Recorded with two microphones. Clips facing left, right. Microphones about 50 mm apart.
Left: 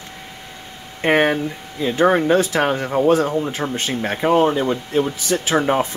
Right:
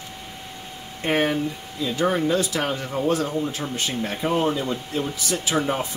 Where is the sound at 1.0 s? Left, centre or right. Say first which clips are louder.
Left 6 dB; left.